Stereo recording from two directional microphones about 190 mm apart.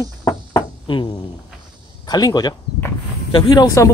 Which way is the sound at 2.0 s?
20° left (ahead or behind).